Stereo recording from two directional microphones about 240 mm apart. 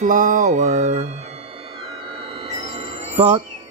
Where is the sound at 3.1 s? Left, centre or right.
Right.